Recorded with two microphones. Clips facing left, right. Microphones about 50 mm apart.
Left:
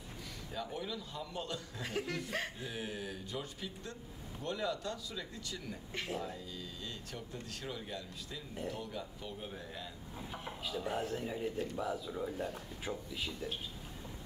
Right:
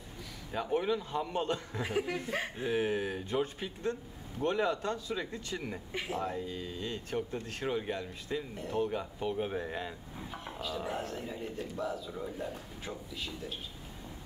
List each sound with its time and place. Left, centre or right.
0.5 s a man's voice: right
1.8 s speech: centre
2.6 s a man's voice: right
10.3 s speech: centre